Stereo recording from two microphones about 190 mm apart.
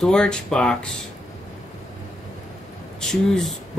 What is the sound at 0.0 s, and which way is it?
Speech, 5° left (ahead or behind).